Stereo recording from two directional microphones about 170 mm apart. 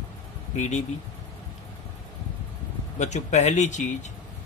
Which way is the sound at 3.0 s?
45° left (ahead or behind).